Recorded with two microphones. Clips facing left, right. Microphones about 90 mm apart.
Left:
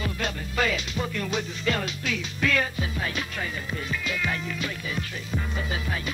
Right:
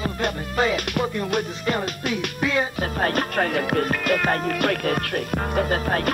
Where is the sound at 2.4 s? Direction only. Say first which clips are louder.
Right 1 dB; 20° right (ahead or behind).